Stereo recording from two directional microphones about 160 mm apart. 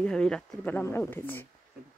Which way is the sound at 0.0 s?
5° left (ahead or behind).